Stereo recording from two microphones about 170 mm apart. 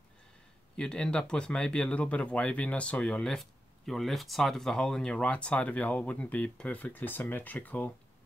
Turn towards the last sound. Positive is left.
turn(degrees=10)  # may be behind; listen again after turning